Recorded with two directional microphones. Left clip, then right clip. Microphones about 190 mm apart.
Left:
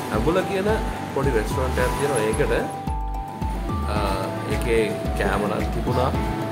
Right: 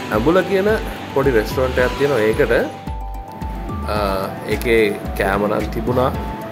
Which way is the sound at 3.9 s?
25° right (ahead or behind).